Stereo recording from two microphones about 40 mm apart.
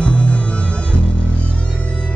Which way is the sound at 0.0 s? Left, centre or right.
Left.